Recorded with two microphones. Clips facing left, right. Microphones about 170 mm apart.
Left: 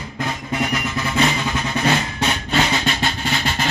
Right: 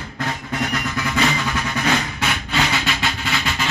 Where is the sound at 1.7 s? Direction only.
35° left (ahead or behind).